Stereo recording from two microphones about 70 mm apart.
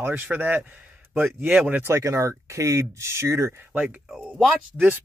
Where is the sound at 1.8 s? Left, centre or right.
Right.